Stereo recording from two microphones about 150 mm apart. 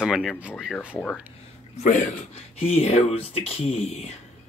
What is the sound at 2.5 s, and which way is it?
Speech, 45° left (ahead or behind).